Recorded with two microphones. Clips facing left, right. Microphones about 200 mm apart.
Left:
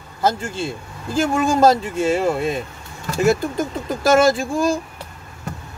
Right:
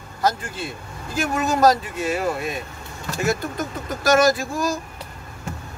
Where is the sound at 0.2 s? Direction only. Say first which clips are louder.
Left 3 dB; 25° left (ahead or behind).